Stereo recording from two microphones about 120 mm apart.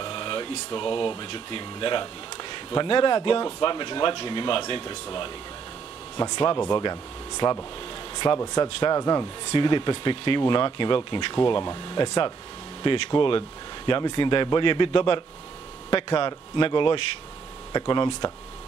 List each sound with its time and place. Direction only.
0.0 s speech: 40° left (ahead or behind)
6.1 s speech: 35° left (ahead or behind)
8.9 s speech: 30° left (ahead or behind)